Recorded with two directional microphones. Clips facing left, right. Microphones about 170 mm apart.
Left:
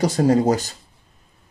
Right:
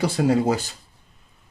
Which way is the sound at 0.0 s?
40° left (ahead or behind).